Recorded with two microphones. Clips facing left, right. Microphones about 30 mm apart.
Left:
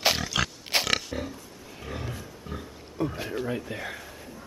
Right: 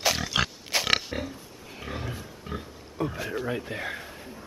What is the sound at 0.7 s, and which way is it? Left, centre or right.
Pig, left.